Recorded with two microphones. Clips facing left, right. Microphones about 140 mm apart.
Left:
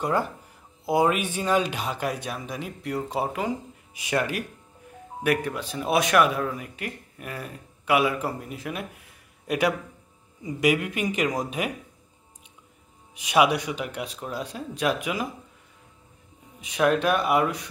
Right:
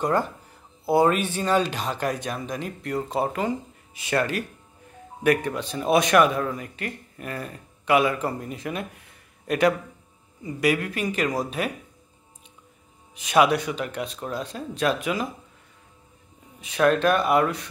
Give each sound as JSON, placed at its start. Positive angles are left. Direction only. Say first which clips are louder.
{"t": 0.0, "sound": "speech", "louder": "right 2 dB", "side_deg": 10}
{"t": 13.1, "sound": "speech", "louder": "right 1 dB", "side_deg": 10}
{"t": 16.6, "sound": "speech", "louder": "right 2 dB", "side_deg": 10}